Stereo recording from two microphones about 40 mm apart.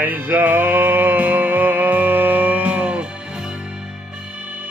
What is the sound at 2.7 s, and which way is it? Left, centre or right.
Music, right.